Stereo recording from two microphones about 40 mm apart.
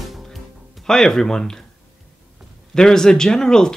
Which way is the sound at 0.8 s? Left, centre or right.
Centre.